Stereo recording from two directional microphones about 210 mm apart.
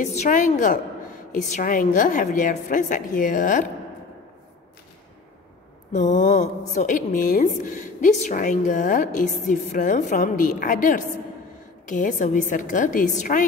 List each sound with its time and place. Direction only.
0.0 s a woman's voice: 35° left (ahead or behind)
5.9 s a woman's voice: 35° left (ahead or behind)